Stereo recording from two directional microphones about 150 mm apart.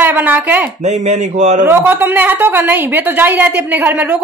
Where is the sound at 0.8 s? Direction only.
50° right (ahead or behind).